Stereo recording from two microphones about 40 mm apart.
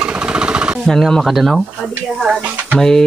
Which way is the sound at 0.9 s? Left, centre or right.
Centre.